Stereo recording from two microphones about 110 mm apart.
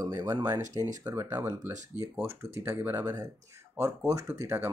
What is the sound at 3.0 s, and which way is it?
Speech, 30° right (ahead or behind).